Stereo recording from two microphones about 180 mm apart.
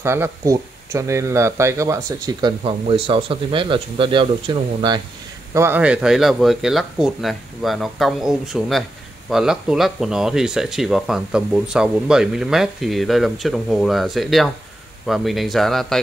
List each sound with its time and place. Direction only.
0.0 s speech: 15° right (ahead or behind)
2.6 s speech: 30° right (ahead or behind)
5.5 s speech: 15° right (ahead or behind)